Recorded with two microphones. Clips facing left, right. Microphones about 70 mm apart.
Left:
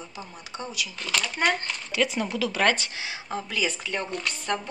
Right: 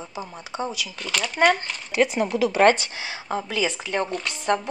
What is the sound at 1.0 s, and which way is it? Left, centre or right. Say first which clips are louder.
Speech: right 6 dB; centre.